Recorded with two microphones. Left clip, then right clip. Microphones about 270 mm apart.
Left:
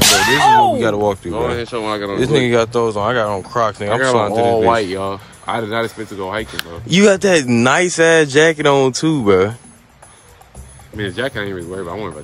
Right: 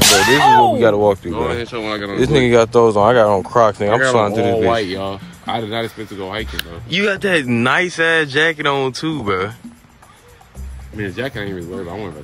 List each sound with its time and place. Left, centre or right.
0.0 s whip: centre
1.3 s speech: left
2.1 s speech: centre
11.0 s speech: centre